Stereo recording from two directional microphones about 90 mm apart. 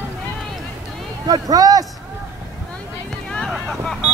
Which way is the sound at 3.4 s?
5° left (ahead or behind).